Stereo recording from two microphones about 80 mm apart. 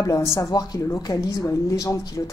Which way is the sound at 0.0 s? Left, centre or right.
Left.